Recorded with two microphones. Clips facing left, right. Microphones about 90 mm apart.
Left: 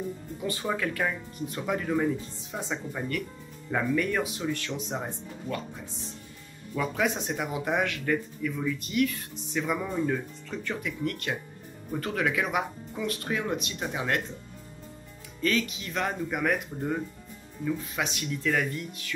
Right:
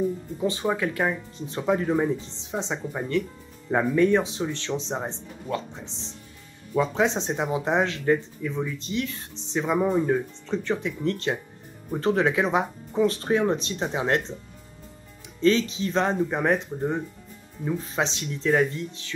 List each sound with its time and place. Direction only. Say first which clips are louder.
0.4 s speech: right 5 dB; 25° right (ahead or behind)
15.4 s speech: right 7 dB; 25° right (ahead or behind)